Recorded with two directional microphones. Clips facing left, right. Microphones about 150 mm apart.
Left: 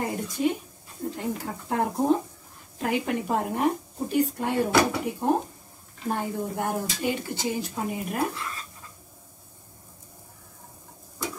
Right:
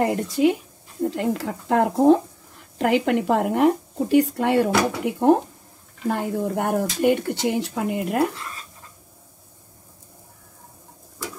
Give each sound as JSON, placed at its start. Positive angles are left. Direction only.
{"t": 0.0, "sound": "a woman's voice", "side_deg": -75}